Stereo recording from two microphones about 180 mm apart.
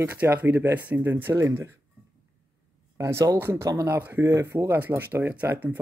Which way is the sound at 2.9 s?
15° right (ahead or behind).